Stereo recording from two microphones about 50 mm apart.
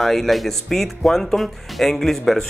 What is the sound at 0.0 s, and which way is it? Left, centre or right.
Speech, centre.